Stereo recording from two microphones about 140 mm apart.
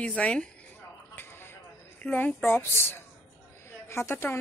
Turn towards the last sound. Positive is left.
turn(degrees=15)  # may be behind; listen again after turning